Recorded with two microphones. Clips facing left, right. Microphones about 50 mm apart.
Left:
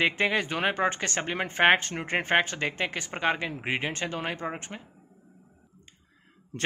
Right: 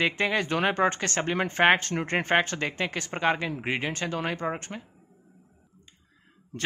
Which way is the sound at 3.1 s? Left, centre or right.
Centre.